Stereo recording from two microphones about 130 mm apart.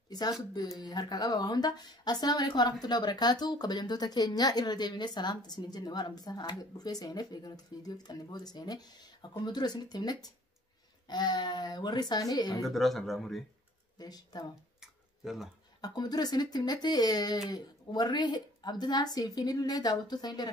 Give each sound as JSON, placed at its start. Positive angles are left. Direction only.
{"t": 0.1, "sound": "speech", "side_deg": 30}
{"t": 12.6, "sound": "speech", "side_deg": 0}
{"t": 13.9, "sound": "speech", "side_deg": 30}
{"t": 14.8, "sound": "a sound", "side_deg": -5}
{"t": 15.8, "sound": "speech", "side_deg": 30}